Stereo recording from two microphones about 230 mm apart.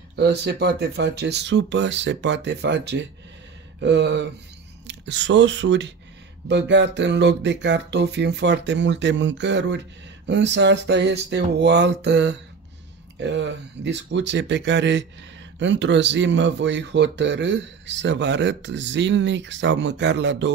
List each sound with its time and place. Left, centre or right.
0.1 s speech: right